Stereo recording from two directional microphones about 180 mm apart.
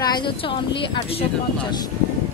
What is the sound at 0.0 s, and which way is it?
Speech, 25° left (ahead or behind).